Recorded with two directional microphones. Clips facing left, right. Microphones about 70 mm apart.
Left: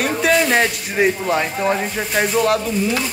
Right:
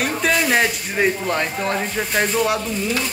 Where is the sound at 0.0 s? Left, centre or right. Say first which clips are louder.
Left 3 dB; centre.